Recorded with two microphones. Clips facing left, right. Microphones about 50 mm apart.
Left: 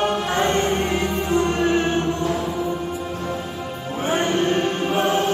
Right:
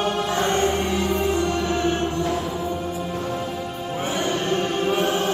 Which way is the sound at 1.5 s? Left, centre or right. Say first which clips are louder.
Left 4 dB; left.